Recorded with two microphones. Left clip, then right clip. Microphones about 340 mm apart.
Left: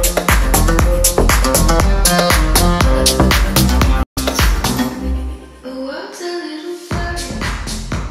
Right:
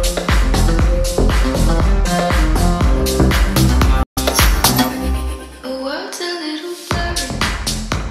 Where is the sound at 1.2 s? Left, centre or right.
Left.